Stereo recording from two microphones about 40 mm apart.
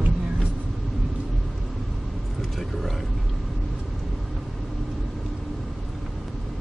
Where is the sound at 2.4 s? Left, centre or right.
Centre.